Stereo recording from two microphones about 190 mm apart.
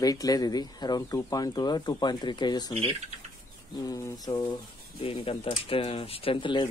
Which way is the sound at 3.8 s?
20° left (ahead or behind).